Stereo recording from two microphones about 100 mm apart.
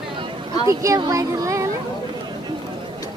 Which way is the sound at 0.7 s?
30° right (ahead or behind).